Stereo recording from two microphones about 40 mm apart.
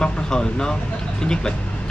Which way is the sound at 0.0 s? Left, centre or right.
Centre.